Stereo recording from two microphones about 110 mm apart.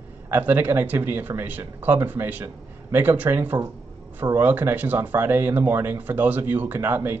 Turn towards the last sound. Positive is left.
turn(degrees=-15)  # may be behind; listen again after turning